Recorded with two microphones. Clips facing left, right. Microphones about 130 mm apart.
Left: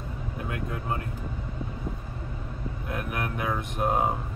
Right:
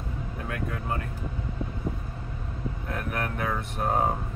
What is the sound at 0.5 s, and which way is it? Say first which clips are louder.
Speech: even; 20° left (ahead or behind).